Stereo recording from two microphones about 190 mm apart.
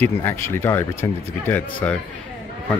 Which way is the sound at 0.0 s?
10° left (ahead or behind).